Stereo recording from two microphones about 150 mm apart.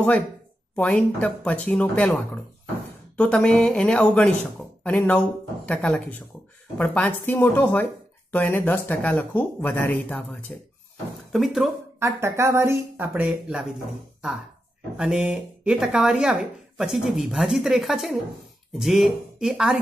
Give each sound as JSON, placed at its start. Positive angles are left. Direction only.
{"t": 0.7, "sound": "speech", "side_deg": 5}
{"t": 12.0, "sound": "speech", "side_deg": -20}
{"t": 15.0, "sound": "speech", "side_deg": -5}